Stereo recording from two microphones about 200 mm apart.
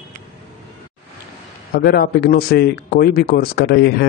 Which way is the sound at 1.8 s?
55° left (ahead or behind).